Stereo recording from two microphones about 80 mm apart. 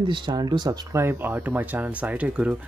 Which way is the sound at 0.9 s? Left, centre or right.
Right.